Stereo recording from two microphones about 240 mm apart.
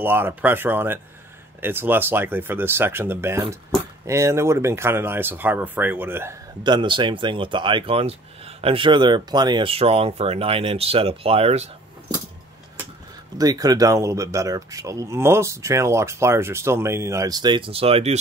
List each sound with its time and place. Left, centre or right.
0.0 s speech: centre; by 11.7 s right
13.4 s speech: centre